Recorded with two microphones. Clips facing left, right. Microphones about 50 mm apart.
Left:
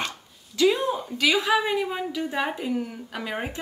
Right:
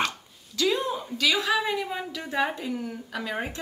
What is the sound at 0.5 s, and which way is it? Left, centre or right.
A woman's voice, centre.